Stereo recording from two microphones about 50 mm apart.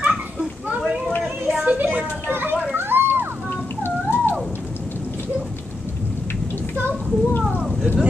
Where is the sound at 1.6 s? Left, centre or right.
Right.